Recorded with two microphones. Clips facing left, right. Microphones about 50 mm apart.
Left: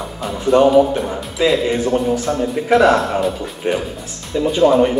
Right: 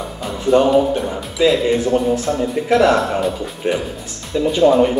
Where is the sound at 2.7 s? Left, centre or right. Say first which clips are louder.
Left 1 dB; left.